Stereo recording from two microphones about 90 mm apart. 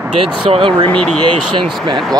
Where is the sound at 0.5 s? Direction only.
75° right (ahead or behind).